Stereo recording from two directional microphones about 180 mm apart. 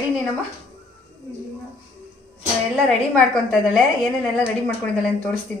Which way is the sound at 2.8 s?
Centre (ahead or behind).